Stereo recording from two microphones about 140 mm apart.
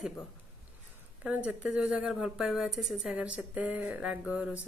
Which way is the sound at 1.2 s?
10° right (ahead or behind).